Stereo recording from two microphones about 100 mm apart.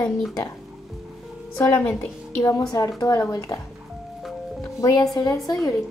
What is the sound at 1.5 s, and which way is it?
Speech, 25° left (ahead or behind).